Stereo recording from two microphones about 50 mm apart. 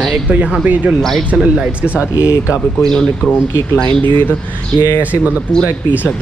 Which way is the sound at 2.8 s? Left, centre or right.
Centre.